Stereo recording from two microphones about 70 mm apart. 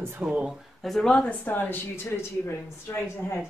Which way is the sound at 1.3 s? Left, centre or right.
Left.